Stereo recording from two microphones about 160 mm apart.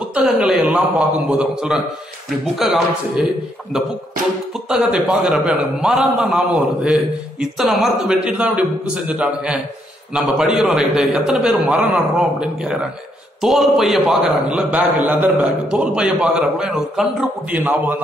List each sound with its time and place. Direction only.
0.4 s a man's voice: centre (ahead or behind)
4.6 s a man's voice: 5° right (ahead or behind)